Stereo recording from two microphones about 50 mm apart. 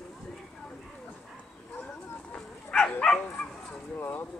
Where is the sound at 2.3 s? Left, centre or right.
Left.